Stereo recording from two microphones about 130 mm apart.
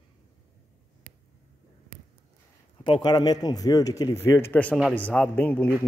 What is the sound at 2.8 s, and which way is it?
A man's voice, 35° left (ahead or behind).